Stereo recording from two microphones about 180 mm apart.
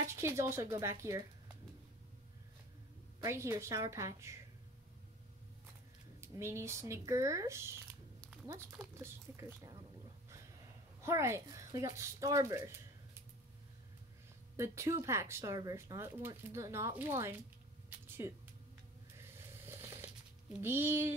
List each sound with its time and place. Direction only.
0.0 s speech: 15° right (ahead or behind)
3.2 s speech: 15° right (ahead or behind)
6.2 s speech: 15° right (ahead or behind)
11.0 s speech: 15° right (ahead or behind)
14.6 s speech: 15° right (ahead or behind)
18.0 s a sound: 10° right (ahead or behind)
19.3 s vehicle: 15° right (ahead or behind)
20.6 s speech: 10° right (ahead or behind)